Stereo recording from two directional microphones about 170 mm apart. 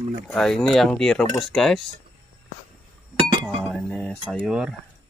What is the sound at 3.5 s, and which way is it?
Speech, centre (ahead or behind).